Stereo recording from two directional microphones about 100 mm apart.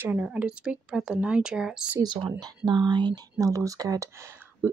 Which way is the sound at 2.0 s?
45° right (ahead or behind).